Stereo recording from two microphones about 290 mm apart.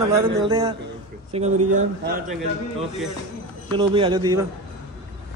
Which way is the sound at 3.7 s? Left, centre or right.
Centre.